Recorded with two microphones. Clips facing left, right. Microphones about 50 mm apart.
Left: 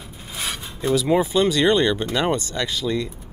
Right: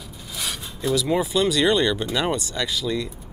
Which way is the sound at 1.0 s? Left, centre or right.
Centre.